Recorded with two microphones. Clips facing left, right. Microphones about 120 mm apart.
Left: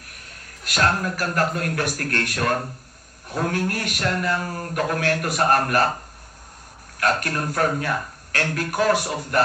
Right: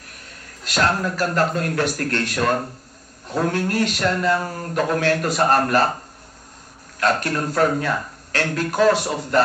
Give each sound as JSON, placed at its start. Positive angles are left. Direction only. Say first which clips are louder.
{"t": 0.7, "sound": "a man's voice", "louder": "right 1 dB", "side_deg": -25}
{"t": 7.0, "sound": "a man's voice", "louder": "right 2 dB", "side_deg": -25}